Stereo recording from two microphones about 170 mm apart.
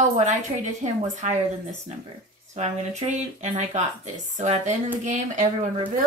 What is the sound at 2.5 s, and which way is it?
Speech, 40° right (ahead or behind).